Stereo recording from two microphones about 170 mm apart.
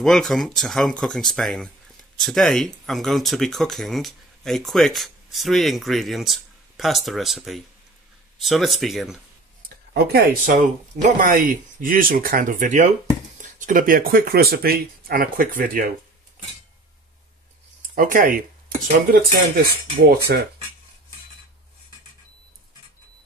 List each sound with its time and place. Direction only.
0.0 s speech: centre (ahead or behind)
9.9 s speech: 65° right (ahead or behind)
17.9 s speech: 55° right (ahead or behind)